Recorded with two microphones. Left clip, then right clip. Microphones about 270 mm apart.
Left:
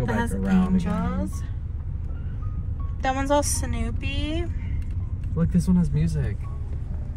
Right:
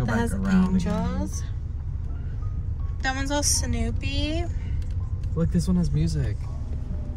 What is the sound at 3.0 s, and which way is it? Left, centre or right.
Speech, centre.